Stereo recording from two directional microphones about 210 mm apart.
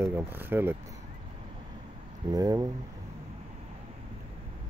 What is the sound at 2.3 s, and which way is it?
Speech, 15° right (ahead or behind).